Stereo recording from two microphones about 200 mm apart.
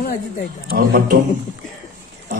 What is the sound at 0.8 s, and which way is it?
Speech, 50° right (ahead or behind).